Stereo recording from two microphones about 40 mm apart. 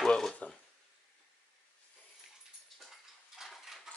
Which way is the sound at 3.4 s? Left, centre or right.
Centre.